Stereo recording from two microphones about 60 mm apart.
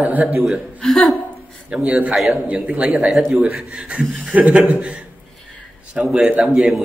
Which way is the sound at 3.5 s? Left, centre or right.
Centre.